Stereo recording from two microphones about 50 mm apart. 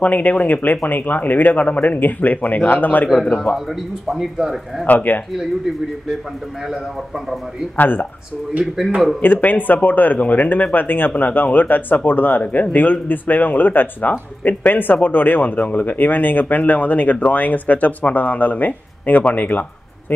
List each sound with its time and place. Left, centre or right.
0.0 s speech: left
4.1 s speech: centre
4.8 s speech: left
7.7 s speech: left
9.2 s speech: left